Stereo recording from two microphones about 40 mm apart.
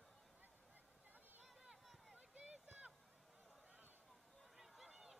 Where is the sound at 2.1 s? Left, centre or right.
Right.